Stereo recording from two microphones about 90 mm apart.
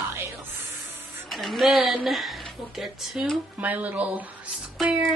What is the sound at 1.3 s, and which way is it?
Speech, centre (ahead or behind).